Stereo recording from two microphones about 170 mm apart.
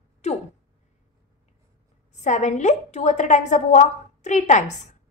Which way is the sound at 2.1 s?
45° left (ahead or behind).